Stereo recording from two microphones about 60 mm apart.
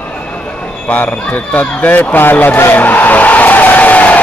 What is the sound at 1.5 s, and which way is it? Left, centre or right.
Speech, left.